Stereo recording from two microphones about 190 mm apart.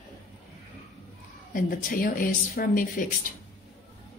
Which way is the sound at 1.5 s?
50° left (ahead or behind).